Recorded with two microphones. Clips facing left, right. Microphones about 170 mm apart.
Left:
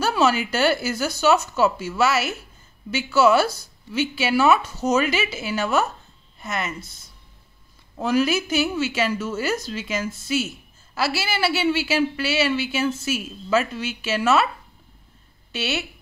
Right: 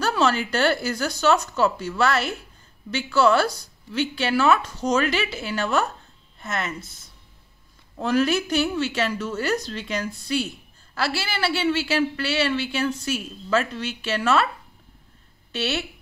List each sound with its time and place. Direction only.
0.0 s a woman's voice: 10° left (ahead or behind)
15.5 s speech: 5° left (ahead or behind)